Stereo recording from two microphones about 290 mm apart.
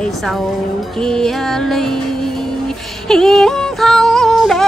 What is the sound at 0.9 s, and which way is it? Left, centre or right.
Music, centre.